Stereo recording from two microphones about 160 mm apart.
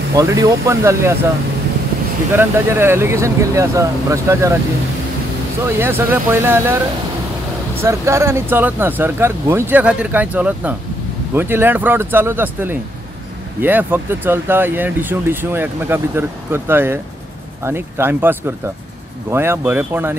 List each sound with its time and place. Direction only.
0.1 s speech: 20° right (ahead or behind)
2.3 s speech: 15° right (ahead or behind)
5.8 s speech: 15° right (ahead or behind)
7.8 s speech: 15° right (ahead or behind)